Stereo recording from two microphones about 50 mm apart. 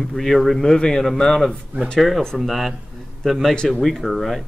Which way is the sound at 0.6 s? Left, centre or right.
Centre.